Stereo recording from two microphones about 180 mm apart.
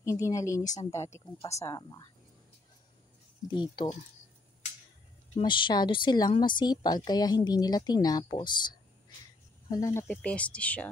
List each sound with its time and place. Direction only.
0.0 s speech: 20° left (ahead or behind)
3.8 s a woman's voice: 30° left (ahead or behind)
5.4 s a woman's voice: 25° left (ahead or behind); by 10.9 s 5° left (ahead or behind)